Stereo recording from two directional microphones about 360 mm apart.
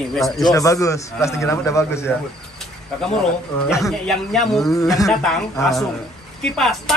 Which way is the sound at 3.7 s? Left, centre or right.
Centre.